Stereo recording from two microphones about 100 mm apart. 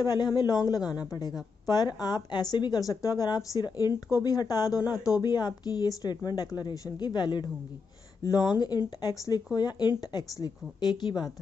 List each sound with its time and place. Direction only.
0.0 s speech: 40° left (ahead or behind)